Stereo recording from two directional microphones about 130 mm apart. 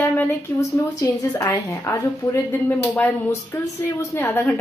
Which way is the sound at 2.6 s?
15° left (ahead or behind).